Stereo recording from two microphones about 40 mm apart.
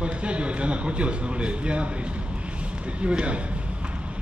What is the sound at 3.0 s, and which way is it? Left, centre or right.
Speech, right.